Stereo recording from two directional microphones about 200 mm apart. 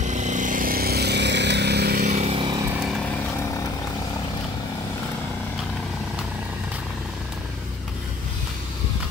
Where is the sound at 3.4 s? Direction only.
15° left (ahead or behind).